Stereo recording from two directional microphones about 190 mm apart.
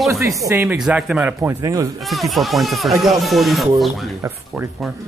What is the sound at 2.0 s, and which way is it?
Speech, centre (ahead or behind).